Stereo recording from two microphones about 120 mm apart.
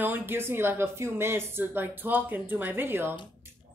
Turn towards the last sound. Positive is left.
turn(degrees=-20)  # may be behind; listen again after turning